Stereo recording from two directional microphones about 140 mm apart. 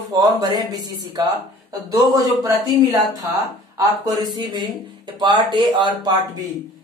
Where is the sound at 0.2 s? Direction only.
30° right (ahead or behind).